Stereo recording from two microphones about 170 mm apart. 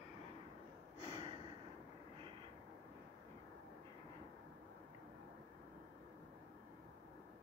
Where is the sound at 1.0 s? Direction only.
35° right (ahead or behind).